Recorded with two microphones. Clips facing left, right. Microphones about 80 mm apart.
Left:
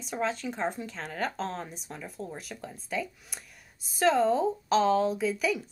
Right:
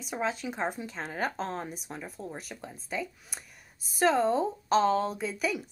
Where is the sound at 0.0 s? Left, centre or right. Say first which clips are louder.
Left 1 dB; centre.